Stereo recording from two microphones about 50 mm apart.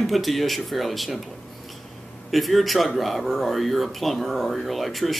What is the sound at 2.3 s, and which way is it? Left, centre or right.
Speech, centre.